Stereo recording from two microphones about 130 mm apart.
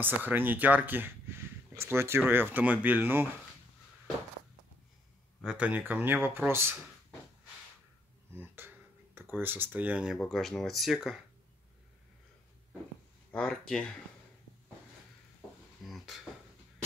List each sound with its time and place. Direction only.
0.0 s speech: 15° right (ahead or behind)
5.4 s speech: 10° right (ahead or behind)
8.4 s speech: 15° right (ahead or behind)
10.2 s speech: 5° left (ahead or behind)
13.3 s speech: 5° left (ahead or behind)
15.8 s dishes: centre (ahead or behind)